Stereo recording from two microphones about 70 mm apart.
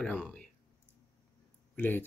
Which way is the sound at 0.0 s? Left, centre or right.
Centre.